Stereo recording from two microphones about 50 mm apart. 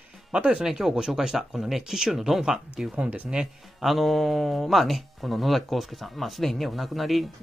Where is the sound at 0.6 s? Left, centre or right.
Centre.